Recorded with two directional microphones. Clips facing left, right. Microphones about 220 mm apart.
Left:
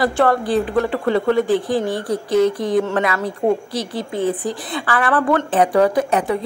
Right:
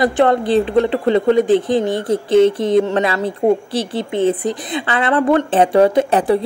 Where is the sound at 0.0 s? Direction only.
20° right (ahead or behind).